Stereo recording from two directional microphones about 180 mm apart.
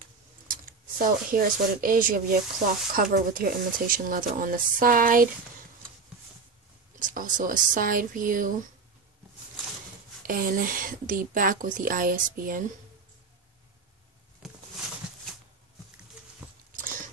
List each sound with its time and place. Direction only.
0.5 s speech: 50° right (ahead or behind)
7.2 s speech: 50° right (ahead or behind)
10.2 s speech: 50° right (ahead or behind)